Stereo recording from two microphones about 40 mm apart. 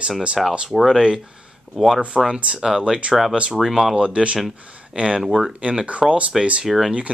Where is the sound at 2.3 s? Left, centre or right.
Right.